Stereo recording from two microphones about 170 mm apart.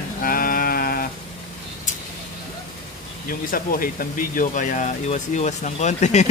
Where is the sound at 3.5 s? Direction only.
55° left (ahead or behind).